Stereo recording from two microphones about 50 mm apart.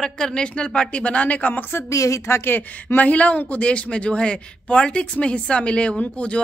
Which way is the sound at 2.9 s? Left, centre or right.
Left.